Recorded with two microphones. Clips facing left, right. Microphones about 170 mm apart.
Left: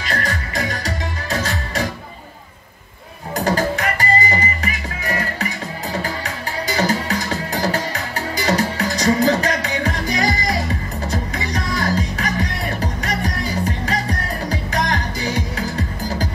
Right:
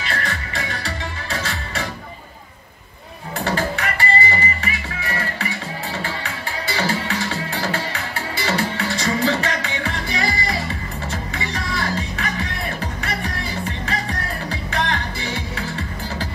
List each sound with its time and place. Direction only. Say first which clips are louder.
0.0 s music: left 3 dB; 40° left (ahead or behind)
3.3 s music: left 4 dB; 40° left (ahead or behind)